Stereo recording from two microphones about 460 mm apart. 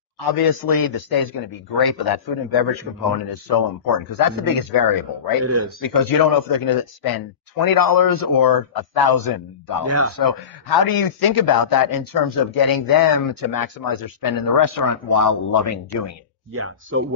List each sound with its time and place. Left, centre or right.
0.3 s a man's voice: left
5.4 s speech: right
5.9 s a man's voice: left
16.5 s speech: right